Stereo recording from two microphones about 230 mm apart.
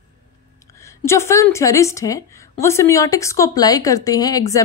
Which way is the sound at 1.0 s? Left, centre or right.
Centre.